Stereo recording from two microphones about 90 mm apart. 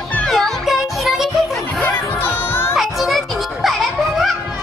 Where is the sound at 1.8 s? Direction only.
25° left (ahead or behind).